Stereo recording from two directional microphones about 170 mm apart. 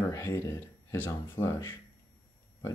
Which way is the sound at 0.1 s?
20° left (ahead or behind).